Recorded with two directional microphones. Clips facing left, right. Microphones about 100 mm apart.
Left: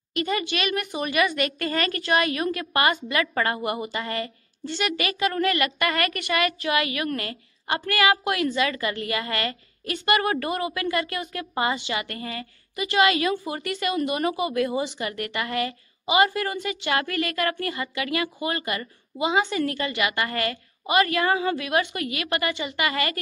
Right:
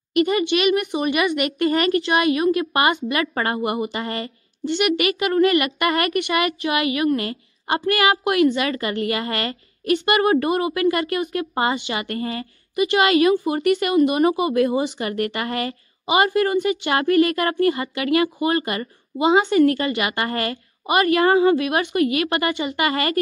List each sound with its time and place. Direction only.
0.2 s a woman's voice: 20° right (ahead or behind)